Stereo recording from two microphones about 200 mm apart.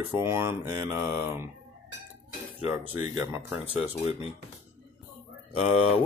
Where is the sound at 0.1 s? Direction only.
10° right (ahead or behind).